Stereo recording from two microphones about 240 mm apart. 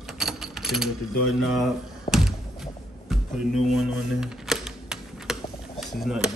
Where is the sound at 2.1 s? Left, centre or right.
Left.